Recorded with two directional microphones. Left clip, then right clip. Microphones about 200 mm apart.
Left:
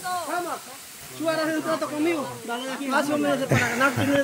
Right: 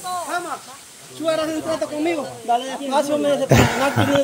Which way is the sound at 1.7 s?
5° right (ahead or behind).